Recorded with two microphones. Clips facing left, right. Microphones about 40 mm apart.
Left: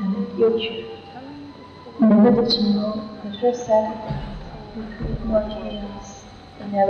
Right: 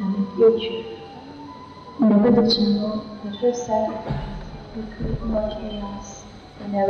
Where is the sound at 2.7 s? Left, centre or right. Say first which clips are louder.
Left 1 dB; left.